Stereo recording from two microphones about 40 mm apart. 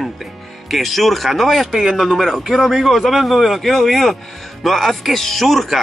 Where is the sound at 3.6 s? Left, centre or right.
Centre.